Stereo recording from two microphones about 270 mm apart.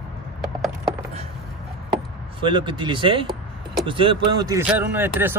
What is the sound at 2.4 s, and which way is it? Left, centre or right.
Speech, centre.